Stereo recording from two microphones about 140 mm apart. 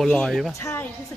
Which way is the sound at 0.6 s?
20° left (ahead or behind).